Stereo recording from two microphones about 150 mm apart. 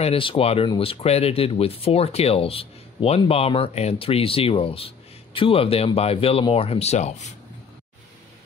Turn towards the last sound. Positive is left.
turn(degrees=50)  # may be behind; listen again after turning